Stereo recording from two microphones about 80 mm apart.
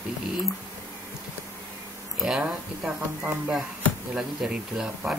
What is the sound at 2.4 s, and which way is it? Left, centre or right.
Speech, centre.